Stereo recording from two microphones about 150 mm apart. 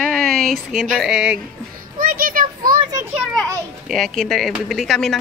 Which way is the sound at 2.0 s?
70° right (ahead or behind).